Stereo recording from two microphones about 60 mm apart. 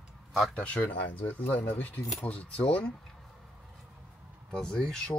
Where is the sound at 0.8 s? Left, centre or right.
Left.